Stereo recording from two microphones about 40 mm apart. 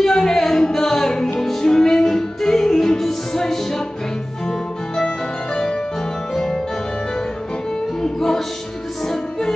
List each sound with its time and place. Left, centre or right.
0.0 s music: centre
6.3 s music: centre
8.0 s music: centre